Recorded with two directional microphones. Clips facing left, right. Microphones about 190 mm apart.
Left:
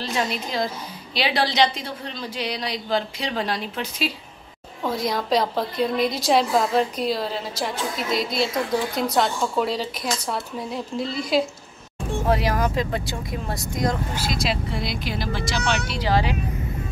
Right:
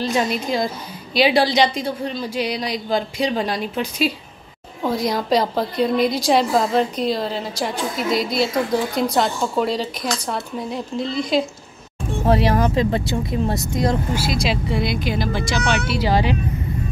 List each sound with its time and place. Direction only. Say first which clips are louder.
0.0 s a woman's voice: right 5 dB; 15° right (ahead or behind)
4.8 s a woman's voice: right 4 dB; centre (ahead or behind)
12.3 s speech: right 5 dB; 30° right (ahead or behind)
14.1 s a woman's voice: right 4 dB; 5° right (ahead or behind)
15.7 s a woman's voice: right 3 dB; 10° right (ahead or behind)